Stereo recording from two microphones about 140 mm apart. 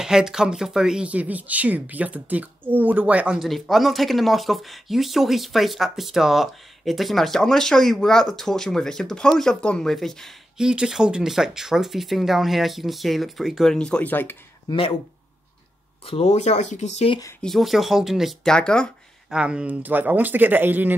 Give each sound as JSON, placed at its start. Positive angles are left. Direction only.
{"t": 0.0, "sound": "speech", "side_deg": -5}
{"t": 14.7, "sound": "speech", "side_deg": 40}
{"t": 16.1, "sound": "speech", "side_deg": 45}
{"t": 17.4, "sound": "speech", "side_deg": 0}
{"t": 19.3, "sound": "speech", "side_deg": -10}